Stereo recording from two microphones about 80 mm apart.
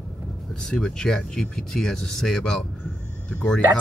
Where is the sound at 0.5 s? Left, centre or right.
Centre.